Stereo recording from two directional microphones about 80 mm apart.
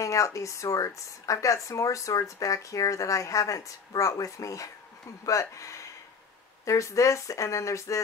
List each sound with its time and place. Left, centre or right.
0.0 s speech: left